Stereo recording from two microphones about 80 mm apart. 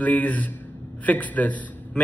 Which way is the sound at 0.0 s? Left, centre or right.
Centre.